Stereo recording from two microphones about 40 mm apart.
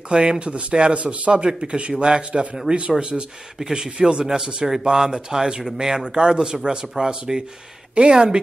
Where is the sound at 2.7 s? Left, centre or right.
Right.